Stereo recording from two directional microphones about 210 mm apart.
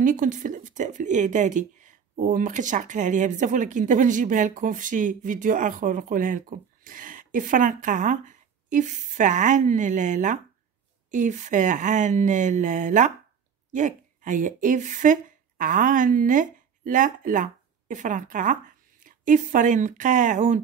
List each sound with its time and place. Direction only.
0.0 s a woman's voice: 40° right (ahead or behind)